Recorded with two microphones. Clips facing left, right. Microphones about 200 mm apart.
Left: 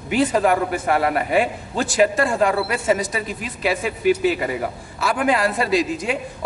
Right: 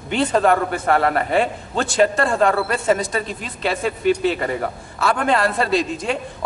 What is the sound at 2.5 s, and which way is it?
Speech, 45° right (ahead or behind).